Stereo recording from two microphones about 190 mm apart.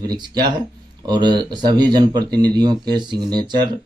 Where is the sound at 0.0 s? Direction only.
20° right (ahead or behind).